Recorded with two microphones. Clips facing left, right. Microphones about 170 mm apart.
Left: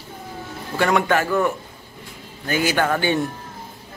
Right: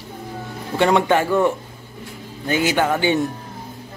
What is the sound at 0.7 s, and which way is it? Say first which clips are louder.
Speech: right 3 dB; 25° right (ahead or behind).